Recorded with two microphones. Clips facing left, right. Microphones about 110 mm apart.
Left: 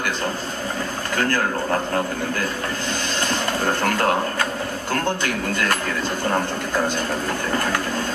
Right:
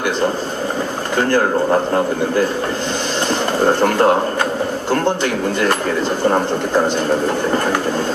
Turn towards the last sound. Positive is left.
turn(degrees=-25)  # may be behind; listen again after turning